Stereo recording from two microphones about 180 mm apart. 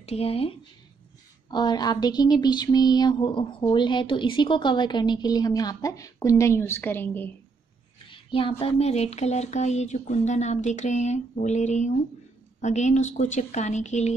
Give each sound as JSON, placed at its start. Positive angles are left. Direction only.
{"t": 0.0, "sound": "speech", "side_deg": 35}
{"t": 8.1, "sound": "speech", "side_deg": 30}